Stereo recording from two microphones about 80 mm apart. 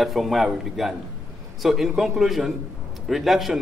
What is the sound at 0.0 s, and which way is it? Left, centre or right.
A man's voice, centre.